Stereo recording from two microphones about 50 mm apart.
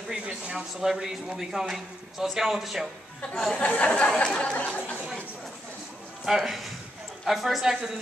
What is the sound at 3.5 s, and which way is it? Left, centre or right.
Speech, left.